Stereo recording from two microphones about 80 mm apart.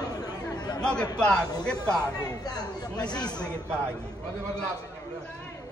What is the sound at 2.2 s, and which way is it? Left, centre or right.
Speech, left.